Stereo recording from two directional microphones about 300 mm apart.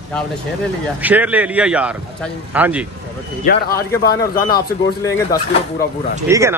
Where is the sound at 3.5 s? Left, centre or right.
Left.